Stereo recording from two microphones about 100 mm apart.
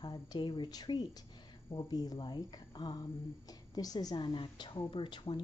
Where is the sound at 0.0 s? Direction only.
45° left (ahead or behind).